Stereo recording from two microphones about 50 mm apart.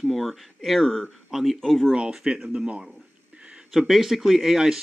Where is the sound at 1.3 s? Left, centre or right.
Centre.